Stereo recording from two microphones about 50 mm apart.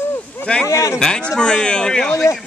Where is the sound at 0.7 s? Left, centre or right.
Left.